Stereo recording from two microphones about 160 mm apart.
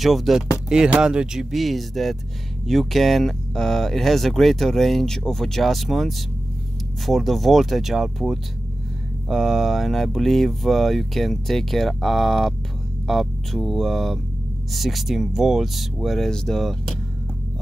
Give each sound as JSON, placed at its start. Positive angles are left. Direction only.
{"t": 0.0, "sound": "speech", "side_deg": 0}